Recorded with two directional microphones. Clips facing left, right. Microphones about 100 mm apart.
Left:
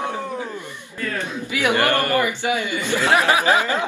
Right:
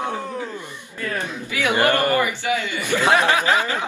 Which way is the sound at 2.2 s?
20° left (ahead or behind).